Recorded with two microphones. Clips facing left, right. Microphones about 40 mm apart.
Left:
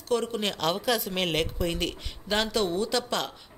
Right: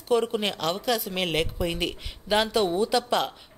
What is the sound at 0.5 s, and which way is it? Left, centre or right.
Speech, centre.